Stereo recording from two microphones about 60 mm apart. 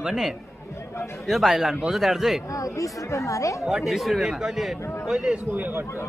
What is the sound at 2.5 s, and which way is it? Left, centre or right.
Speech, left.